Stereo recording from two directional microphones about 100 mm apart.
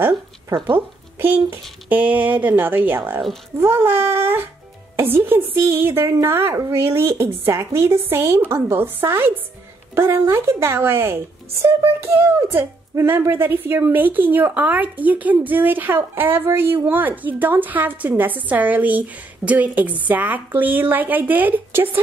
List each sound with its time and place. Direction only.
0.7 s speech: 20° right (ahead or behind)